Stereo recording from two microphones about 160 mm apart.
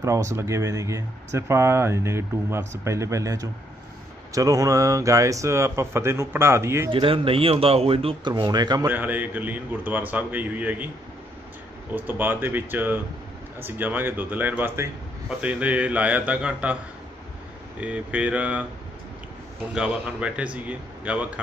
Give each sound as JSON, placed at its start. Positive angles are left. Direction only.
{"t": 0.0, "sound": "a man's voice", "side_deg": -20}
{"t": 6.9, "sound": "speech", "side_deg": -35}
{"t": 8.8, "sound": "a man's voice", "side_deg": -10}
{"t": 11.9, "sound": "a man's voice", "side_deg": -10}
{"t": 17.7, "sound": "a man's voice", "side_deg": -10}
{"t": 19.7, "sound": "a man's voice", "side_deg": -5}